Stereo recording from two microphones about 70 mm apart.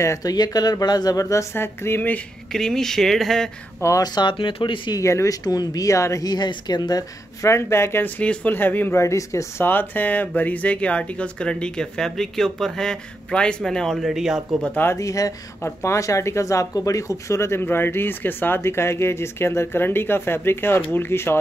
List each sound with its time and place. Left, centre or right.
0.2 s speech: left
1.2 s speech: left
2.5 s speech: centre
4.0 s speech: left
5.0 s speech: left
5.4 s speech: left
6.2 s speech: left
7.4 s speech: left
8.0 s speech: left
8.9 s speech: left
9.7 s speech: left; by 14.6 s centre
15.0 s speech: left
15.6 s speech: left